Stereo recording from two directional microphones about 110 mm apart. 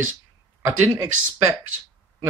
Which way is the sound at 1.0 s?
20° right (ahead or behind).